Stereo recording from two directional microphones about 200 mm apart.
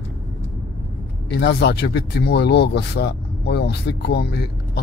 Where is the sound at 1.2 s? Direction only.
55° left (ahead or behind).